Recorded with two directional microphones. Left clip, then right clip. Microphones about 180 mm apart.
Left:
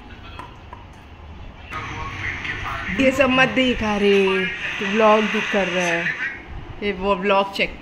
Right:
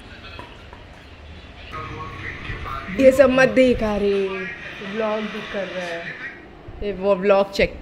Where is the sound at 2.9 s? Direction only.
15° right (ahead or behind).